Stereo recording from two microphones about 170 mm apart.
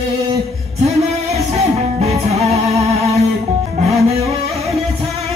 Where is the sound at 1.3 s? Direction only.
40° right (ahead or behind).